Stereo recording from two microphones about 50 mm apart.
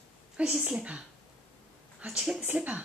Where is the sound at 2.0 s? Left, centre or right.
Right.